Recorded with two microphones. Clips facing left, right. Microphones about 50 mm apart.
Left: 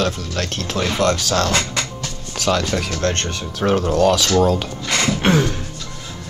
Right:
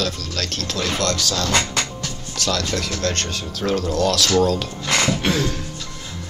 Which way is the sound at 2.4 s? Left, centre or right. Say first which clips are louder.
Left 4 dB; centre.